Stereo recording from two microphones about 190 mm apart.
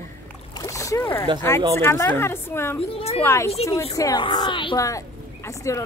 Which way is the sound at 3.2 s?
15° left (ahead or behind).